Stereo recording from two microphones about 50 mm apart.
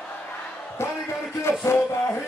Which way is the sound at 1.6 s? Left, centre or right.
Left.